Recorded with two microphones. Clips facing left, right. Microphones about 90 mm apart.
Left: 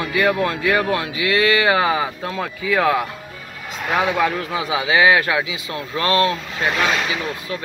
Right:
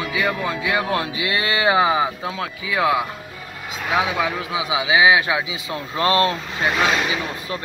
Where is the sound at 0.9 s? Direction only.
25° right (ahead or behind).